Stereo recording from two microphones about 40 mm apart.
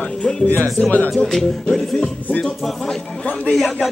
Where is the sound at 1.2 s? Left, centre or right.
Centre.